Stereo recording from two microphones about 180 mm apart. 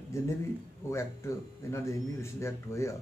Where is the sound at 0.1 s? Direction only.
15° left (ahead or behind).